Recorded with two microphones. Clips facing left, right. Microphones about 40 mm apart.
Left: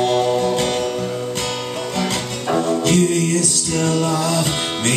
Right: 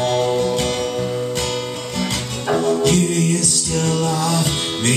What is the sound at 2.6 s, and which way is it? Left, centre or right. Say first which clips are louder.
Music: right 3 dB; left.